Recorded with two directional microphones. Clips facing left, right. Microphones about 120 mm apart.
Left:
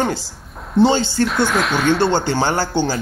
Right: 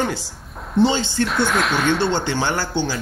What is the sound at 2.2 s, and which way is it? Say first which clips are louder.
Speech: left 3 dB; 40° left (ahead or behind).